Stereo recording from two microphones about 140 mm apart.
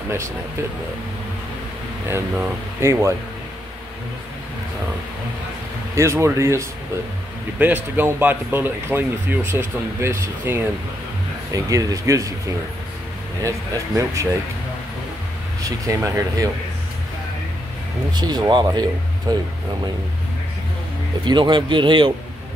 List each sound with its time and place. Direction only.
2.3 s speech: 20° right (ahead or behind)
5.9 s speech: 20° right (ahead or behind)
13.4 s speech: 25° right (ahead or behind)
15.9 s speech: 20° right (ahead or behind)
18.1 s speech: 30° right (ahead or behind)
21.2 s speech: 35° right (ahead or behind)